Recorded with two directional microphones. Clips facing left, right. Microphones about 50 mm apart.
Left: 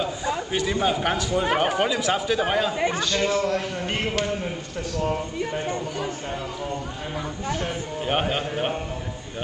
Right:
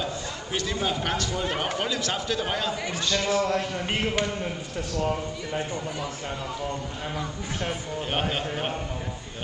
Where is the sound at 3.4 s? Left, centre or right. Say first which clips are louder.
Left 1 dB; centre.